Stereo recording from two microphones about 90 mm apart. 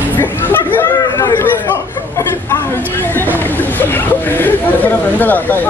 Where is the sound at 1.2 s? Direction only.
30° left (ahead or behind).